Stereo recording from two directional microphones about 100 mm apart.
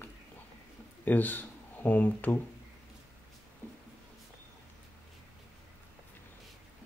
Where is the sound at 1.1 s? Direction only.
20° left (ahead or behind).